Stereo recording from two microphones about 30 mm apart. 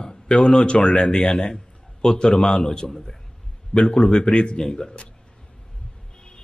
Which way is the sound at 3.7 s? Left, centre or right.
Left.